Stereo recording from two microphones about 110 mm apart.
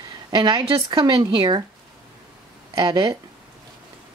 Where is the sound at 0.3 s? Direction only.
40° right (ahead or behind).